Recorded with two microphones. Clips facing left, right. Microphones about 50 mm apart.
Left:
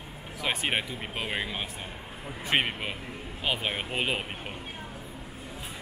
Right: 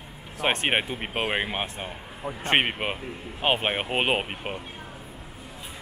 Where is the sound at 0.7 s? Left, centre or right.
Right.